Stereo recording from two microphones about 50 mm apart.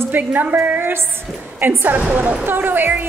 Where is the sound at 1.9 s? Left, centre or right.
Right.